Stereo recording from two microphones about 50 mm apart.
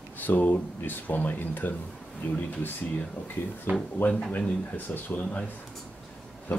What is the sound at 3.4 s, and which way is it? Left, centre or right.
Speech, left.